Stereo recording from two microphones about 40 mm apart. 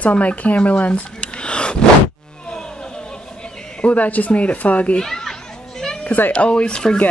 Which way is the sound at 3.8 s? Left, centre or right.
Left.